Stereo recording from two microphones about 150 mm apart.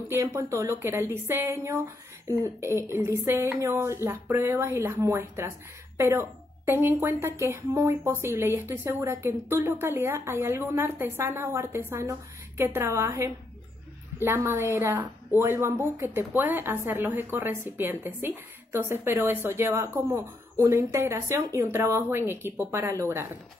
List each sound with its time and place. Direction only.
0.1 s a woman's voice: 15° right (ahead or behind)